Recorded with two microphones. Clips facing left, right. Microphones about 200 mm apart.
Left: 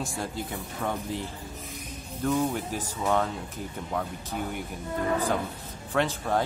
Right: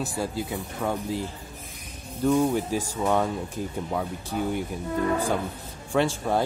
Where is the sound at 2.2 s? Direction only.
10° right (ahead or behind).